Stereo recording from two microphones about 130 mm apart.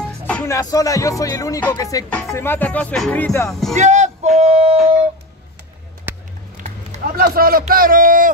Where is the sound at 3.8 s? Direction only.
65° right (ahead or behind).